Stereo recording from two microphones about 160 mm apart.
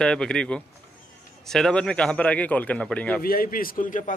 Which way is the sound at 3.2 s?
70° left (ahead or behind).